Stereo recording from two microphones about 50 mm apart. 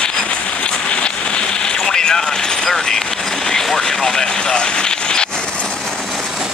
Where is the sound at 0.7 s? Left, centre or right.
Centre.